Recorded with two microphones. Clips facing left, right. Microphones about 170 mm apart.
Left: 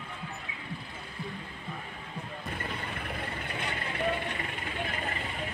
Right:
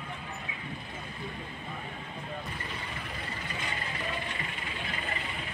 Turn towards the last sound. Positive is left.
turn(degrees=60)  # may be behind; listen again after turning